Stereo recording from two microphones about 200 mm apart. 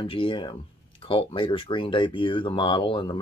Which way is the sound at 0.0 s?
25° left (ahead or behind).